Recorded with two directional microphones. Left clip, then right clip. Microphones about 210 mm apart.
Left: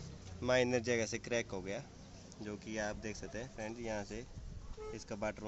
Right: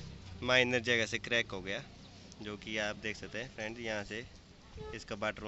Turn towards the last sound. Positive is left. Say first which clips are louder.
# right 3 dB
turn(degrees=0)  # may be behind; listen again after turning